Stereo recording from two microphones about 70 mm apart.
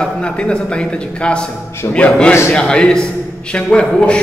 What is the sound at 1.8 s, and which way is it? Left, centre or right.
Speech, left.